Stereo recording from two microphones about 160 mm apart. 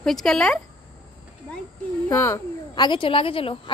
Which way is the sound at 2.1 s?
15° left (ahead or behind).